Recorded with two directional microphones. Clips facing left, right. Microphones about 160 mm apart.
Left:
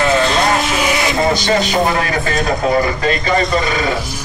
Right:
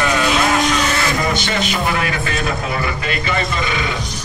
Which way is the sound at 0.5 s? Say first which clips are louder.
Left 1 dB; 5° left (ahead or behind).